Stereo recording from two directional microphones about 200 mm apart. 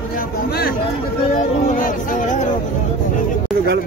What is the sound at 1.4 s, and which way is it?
Chatter, 35° left (ahead or behind).